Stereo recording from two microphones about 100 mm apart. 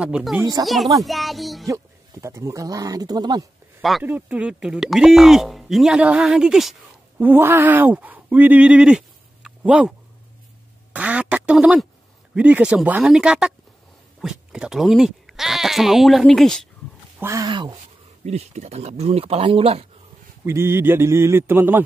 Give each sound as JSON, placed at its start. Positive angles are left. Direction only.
{"t": 0.0, "sound": "speech", "side_deg": -5}
{"t": 0.6, "sound": "speech", "side_deg": -40}
{"t": 1.0, "sound": "speech", "side_deg": 0}
{"t": 1.7, "sound": "speech", "side_deg": -30}
{"t": 4.0, "sound": "speech", "side_deg": -15}
{"t": 7.2, "sound": "speech", "side_deg": -20}
{"t": 11.0, "sound": "quack", "side_deg": -15}
{"t": 12.4, "sound": "speech", "side_deg": -15}
{"t": 17.2, "sound": "speech", "side_deg": -30}
{"t": 18.2, "sound": "speech", "side_deg": -90}
{"t": 20.4, "sound": "a man's voice", "side_deg": -25}